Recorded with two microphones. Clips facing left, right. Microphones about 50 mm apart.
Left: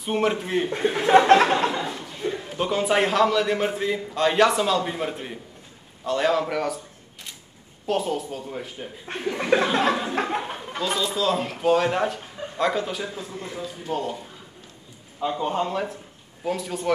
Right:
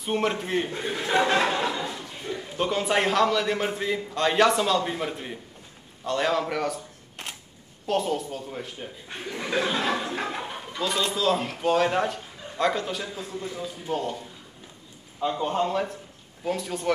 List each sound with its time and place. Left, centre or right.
0.0 s a man's voice: centre
0.7 s speech: left
1.9 s chuckle: centre
2.5 s a man's voice: centre
7.8 s a man's voice: centre
9.2 s speech: left
9.8 s chuckle: centre
10.8 s a man's voice: centre
15.1 s a man's voice: centre